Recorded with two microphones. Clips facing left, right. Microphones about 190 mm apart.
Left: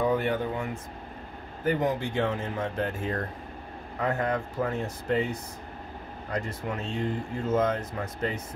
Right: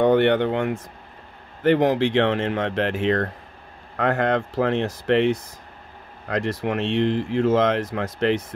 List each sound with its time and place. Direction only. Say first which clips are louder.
0.0 s speech: right 9 dB; 80° right
3.9 s speech: right 7 dB; 80° right